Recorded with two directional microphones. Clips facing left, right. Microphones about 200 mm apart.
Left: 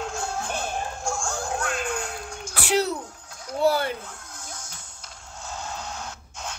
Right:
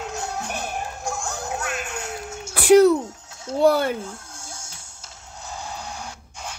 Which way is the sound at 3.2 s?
25° right (ahead or behind).